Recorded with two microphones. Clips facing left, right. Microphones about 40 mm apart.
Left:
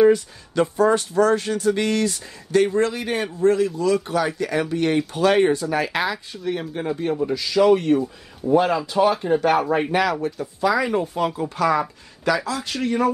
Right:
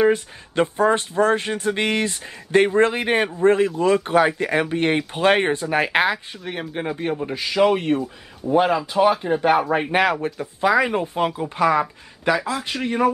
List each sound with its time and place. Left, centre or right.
0.0 s speech: right
6.3 s speech: centre
6.7 s speech: right
10.2 s speech: right